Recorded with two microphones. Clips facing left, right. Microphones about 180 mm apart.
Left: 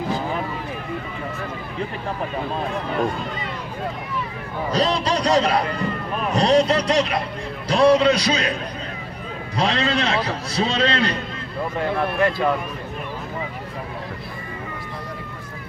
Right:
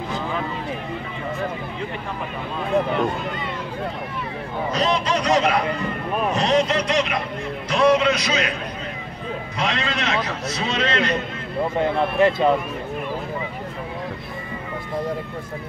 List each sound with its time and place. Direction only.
4.6 s a man's voice: 35° left (ahead or behind)
9.6 s a man's voice: 35° left (ahead or behind)
11.7 s speech: 20° right (ahead or behind)